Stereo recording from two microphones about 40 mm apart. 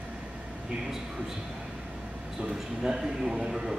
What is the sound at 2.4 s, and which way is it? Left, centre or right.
A man's voice, centre.